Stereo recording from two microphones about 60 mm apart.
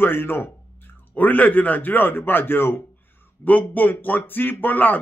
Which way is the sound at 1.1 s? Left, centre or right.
Left.